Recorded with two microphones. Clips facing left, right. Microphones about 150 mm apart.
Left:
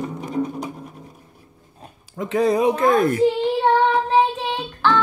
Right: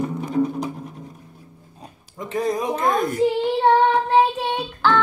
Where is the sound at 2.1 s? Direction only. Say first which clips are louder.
Left 5 dB; 80° left; by 3.1 s 65° left (ahead or behind).